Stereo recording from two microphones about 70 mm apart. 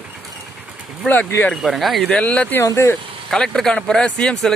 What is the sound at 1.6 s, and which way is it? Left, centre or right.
Speech, centre.